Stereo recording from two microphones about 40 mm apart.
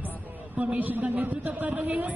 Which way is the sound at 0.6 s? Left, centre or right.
Right.